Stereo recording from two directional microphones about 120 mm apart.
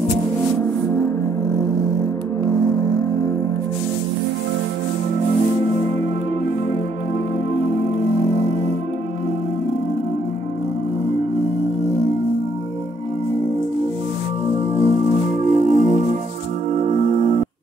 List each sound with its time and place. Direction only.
14.5 s music: 50° right (ahead or behind)
15.4 s music: 80° right
16.7 s music: 90° right